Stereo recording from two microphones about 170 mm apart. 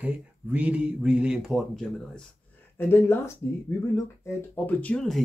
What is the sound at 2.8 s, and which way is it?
Speech, 15° left (ahead or behind).